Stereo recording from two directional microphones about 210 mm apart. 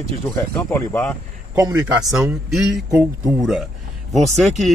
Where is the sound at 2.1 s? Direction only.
5° right (ahead or behind).